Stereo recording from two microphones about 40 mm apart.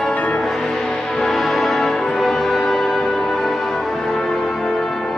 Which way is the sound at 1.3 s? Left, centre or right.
Centre.